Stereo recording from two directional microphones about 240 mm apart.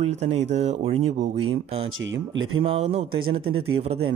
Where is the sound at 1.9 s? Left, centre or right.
Right.